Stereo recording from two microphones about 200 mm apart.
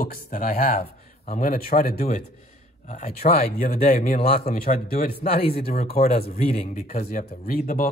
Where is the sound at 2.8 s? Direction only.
35° left (ahead or behind).